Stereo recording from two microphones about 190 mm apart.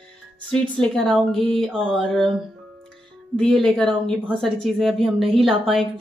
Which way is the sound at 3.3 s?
5° left (ahead or behind).